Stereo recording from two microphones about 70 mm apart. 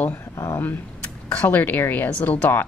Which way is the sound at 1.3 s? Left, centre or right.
Left.